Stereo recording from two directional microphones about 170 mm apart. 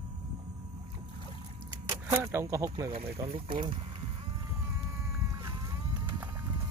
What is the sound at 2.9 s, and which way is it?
Speech, 35° right (ahead or behind).